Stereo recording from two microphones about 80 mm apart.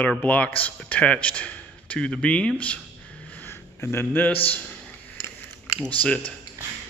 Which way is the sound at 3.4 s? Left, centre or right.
Left.